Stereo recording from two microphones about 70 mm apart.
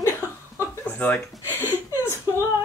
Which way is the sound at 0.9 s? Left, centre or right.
Left.